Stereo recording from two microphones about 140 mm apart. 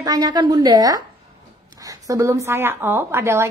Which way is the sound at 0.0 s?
25° right (ahead or behind).